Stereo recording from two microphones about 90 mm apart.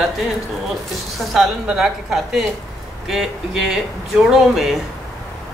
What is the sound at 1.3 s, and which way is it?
A woman's voice, centre (ahead or behind).